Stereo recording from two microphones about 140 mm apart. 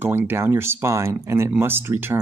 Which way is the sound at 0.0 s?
15° right (ahead or behind).